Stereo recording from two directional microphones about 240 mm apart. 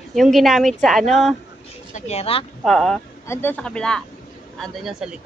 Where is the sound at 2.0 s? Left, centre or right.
Left.